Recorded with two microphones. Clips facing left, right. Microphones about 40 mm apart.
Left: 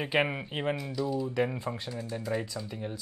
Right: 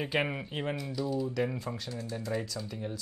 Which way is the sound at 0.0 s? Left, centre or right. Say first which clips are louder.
Left 3 dB; centre.